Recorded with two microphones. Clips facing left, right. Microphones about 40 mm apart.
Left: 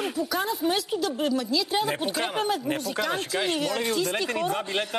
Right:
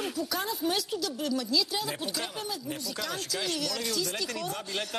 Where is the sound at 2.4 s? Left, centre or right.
Left.